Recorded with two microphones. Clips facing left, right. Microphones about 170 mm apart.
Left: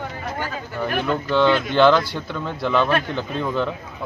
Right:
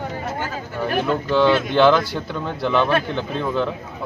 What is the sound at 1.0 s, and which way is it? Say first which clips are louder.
Speech: right 1 dB; 5° right (ahead or behind).